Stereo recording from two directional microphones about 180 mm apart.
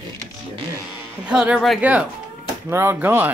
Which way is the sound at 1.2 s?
5° right (ahead or behind).